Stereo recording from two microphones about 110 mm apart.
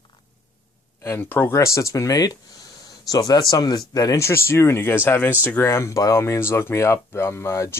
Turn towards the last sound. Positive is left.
turn(degrees=25)  # may be behind; listen again after turning